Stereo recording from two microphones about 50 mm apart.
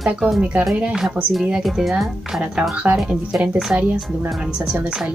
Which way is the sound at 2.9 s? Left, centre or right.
Centre.